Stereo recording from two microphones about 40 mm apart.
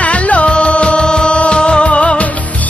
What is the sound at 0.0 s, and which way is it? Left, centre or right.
Music, left.